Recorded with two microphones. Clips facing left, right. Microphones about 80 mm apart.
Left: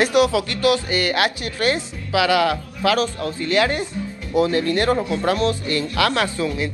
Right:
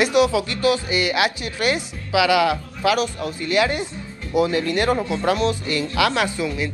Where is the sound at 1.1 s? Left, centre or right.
Centre.